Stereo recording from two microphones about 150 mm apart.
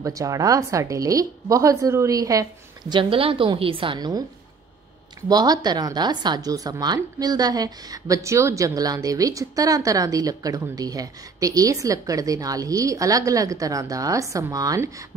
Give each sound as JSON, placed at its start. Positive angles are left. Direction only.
{"t": 0.0, "sound": "a woman's voice", "side_deg": -20}
{"t": 5.3, "sound": "a woman's voice", "side_deg": -25}